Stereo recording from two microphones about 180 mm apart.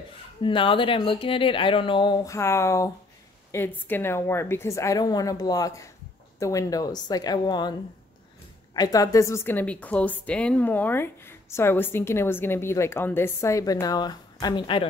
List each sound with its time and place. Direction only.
0.4 s a woman's voice: 30° left (ahead or behind)
8.7 s a woman's voice: 20° left (ahead or behind)